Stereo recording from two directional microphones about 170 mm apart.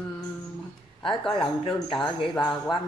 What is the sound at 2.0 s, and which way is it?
Speech, centre (ahead or behind).